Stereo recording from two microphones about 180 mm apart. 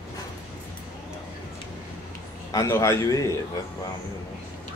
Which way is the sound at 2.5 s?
15° left (ahead or behind).